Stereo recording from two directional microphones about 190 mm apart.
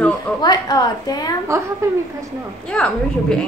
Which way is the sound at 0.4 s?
20° left (ahead or behind).